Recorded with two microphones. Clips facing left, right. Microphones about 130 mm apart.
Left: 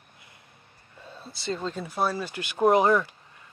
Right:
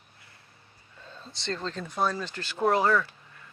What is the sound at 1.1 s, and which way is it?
Speech, 10° left (ahead or behind).